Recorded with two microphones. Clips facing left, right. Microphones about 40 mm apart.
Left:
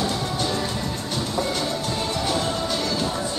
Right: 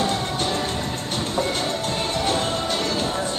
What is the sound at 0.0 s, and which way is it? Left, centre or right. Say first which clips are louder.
Music: right 2 dB; right.